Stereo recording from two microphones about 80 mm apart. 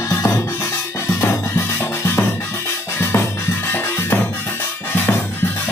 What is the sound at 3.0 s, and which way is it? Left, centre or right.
Music, left.